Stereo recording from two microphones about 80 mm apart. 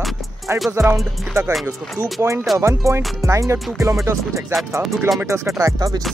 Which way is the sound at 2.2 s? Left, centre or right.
Right.